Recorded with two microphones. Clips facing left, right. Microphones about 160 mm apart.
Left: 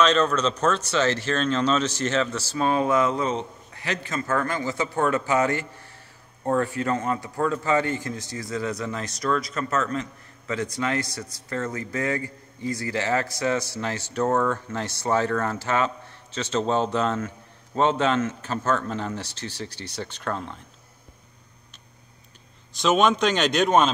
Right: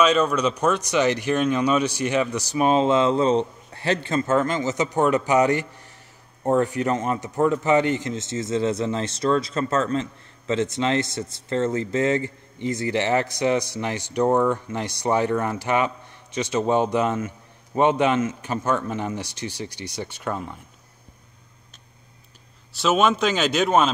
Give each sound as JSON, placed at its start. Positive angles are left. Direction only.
{"t": 0.0, "sound": "a man's voice", "side_deg": -10}
{"t": 22.8, "sound": "a man's voice", "side_deg": -5}